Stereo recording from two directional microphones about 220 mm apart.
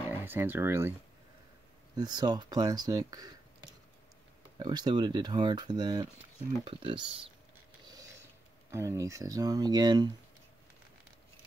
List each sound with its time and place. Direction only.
0.1 s speech: 10° right (ahead or behind)
2.0 s speech: 20° right (ahead or behind)
7.8 s mechanisms: 15° right (ahead or behind)
8.6 s speech: 15° right (ahead or behind)